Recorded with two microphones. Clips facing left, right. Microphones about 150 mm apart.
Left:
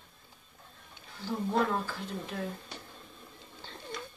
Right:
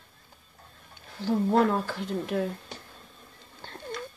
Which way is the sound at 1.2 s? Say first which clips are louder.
Right 7 dB; 70° right (ahead or behind).